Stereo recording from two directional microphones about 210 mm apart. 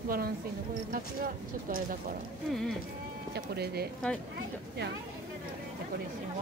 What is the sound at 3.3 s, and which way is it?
Speech, 50° right (ahead or behind).